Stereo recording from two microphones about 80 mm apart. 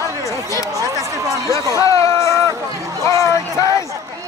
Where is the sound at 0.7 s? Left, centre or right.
Right.